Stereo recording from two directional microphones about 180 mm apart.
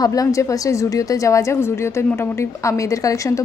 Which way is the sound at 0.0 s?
20° left (ahead or behind).